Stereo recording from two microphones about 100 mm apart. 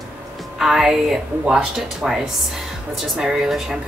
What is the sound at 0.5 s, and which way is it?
A woman's voice, 5° right (ahead or behind).